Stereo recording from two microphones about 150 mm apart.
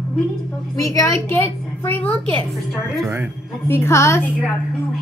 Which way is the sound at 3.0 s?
15° right (ahead or behind).